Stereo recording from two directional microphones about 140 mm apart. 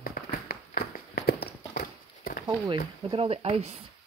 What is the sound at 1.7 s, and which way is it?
Horse, 85° left.